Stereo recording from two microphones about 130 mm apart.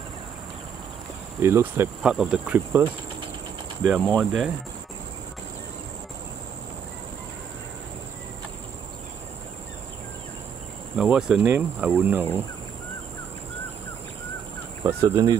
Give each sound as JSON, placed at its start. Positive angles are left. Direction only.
{"t": 1.4, "sound": "cricket", "side_deg": -20}
{"t": 2.0, "sound": "insect", "side_deg": -5}
{"t": 3.8, "sound": "speech", "side_deg": 0}
{"t": 11.0, "sound": "speech", "side_deg": -5}
{"t": 11.4, "sound": "insect", "side_deg": -15}
{"t": 14.9, "sound": "cricket", "side_deg": -20}